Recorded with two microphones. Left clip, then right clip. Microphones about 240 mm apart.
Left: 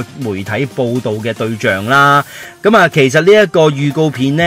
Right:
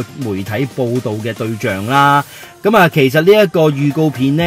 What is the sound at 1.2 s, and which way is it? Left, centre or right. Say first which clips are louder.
Speech: left 3 dB; centre.